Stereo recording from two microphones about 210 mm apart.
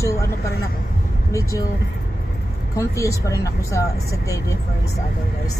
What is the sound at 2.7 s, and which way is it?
Speech, 15° left (ahead or behind).